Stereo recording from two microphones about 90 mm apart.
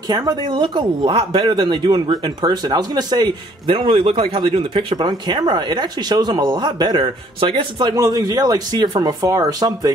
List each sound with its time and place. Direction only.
0.1 s speech: 45° right (ahead or behind)
0.5 s speech: 60° right (ahead or behind)
3.7 s speech: 80° right
7.9 s speech: 40° right (ahead or behind)